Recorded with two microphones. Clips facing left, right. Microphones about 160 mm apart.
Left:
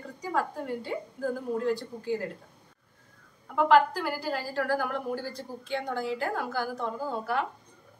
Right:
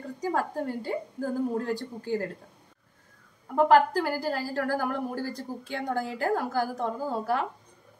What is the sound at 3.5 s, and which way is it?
A woman's voice, 45° right (ahead or behind).